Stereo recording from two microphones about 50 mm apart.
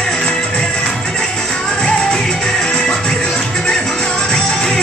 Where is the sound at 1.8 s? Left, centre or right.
Centre.